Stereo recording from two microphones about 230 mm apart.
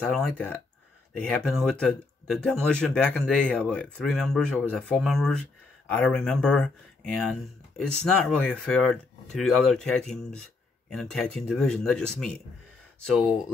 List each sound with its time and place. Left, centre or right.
0.0 s speech: centre